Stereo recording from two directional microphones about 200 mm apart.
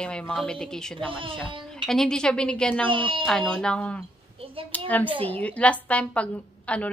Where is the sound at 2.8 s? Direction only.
25° right (ahead or behind).